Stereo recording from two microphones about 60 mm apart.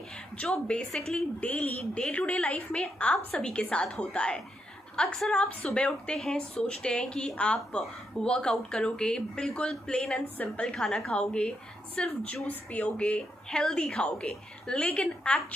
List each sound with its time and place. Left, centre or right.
0.4 s speech: centre
1.4 s a woman's voice: left